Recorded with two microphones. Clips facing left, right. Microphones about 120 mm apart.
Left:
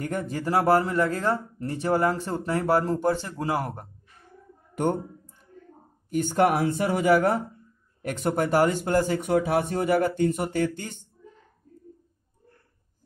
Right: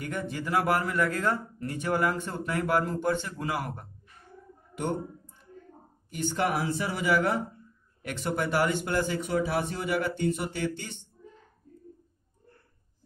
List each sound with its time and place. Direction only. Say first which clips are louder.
0.0 s speech: left 4 dB; 40° left (ahead or behind)
6.0 s speech: left 7 dB; 45° left (ahead or behind)
9.2 s speech: left 5 dB; 55° left (ahead or behind)